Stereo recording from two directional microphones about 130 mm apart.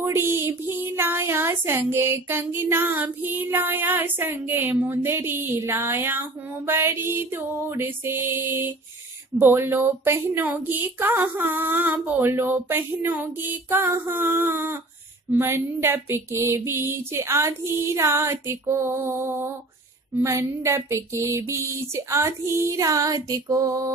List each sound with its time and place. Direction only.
0.0 s speech: 20° right (ahead or behind)
15.3 s female singing: 20° right (ahead or behind)